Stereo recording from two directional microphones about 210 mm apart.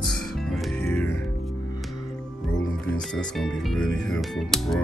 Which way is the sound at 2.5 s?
75° left (ahead or behind).